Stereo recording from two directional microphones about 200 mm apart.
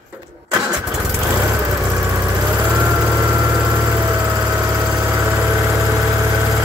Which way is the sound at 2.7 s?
10° right (ahead or behind).